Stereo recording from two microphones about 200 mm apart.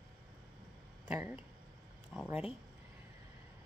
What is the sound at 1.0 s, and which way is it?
Speech, 10° right (ahead or behind).